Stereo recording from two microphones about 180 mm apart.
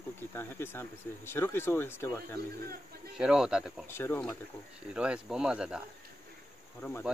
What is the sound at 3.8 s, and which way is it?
Speech, 15° left (ahead or behind).